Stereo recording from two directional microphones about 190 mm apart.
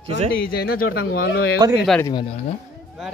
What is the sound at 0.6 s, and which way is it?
Speech, 55° left (ahead or behind).